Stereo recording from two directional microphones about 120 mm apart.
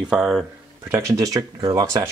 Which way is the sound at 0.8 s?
20° right (ahead or behind).